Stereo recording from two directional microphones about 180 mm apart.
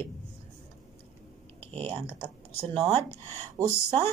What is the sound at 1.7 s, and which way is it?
Speech, 35° right (ahead or behind).